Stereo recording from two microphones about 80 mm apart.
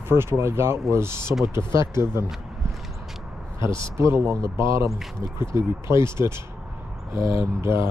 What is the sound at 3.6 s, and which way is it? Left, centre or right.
Speech, left.